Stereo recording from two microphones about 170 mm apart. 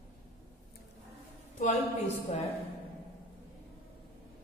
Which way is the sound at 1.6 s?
45° left (ahead or behind).